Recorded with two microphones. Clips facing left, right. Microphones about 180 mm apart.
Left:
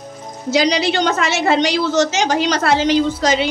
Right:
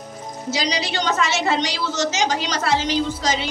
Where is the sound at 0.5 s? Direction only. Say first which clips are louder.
Left 9 dB; 60° left (ahead or behind).